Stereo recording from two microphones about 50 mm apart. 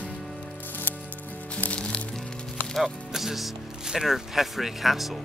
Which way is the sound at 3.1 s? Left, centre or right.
Centre.